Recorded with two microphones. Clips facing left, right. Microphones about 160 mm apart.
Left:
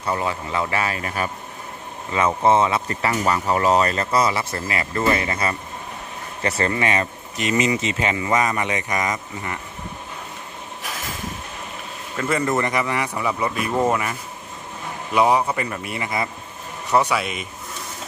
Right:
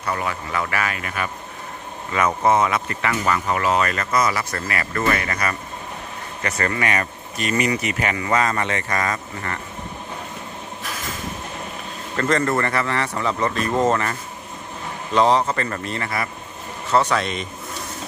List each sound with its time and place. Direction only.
0.0 s speech: 25° left (ahead or behind)
12.2 s speech: 10° left (ahead or behind)
15.1 s speech: 10° left (ahead or behind)